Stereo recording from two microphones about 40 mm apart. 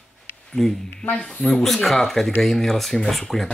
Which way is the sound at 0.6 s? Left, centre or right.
Centre.